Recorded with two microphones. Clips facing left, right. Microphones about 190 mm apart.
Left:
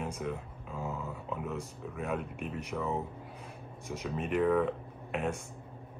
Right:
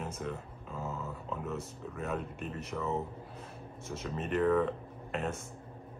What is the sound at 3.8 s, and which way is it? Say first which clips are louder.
Speech: left 2 dB; 15° left (ahead or behind).